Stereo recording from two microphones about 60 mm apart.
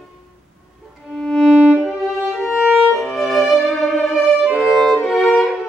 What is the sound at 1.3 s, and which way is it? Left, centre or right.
Violin, centre.